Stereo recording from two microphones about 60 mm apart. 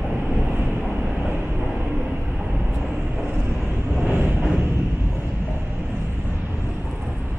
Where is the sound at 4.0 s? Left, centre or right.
Right.